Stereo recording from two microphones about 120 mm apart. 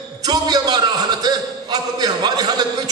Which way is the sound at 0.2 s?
35° right (ahead or behind).